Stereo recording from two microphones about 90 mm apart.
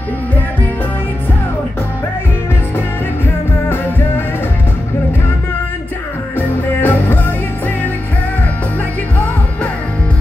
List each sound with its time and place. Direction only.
6.3 s music: 20° left (ahead or behind)